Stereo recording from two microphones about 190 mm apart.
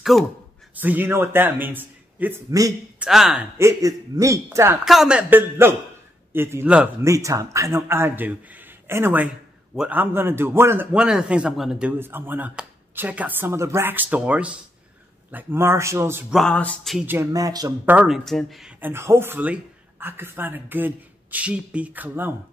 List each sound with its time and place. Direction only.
0.1 s speech: centre (ahead or behind)
3.0 s speech: centre (ahead or behind)
3.5 s speech: 15° right (ahead or behind)
4.8 s speech: 5° right (ahead or behind)
17.0 s a man's voice: 10° right (ahead or behind)
17.9 s speech: 5° right (ahead or behind)